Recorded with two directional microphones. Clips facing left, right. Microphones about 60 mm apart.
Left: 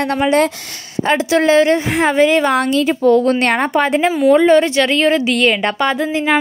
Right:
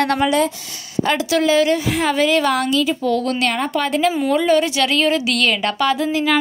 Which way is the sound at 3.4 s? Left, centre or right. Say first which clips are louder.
Left 4 dB; left.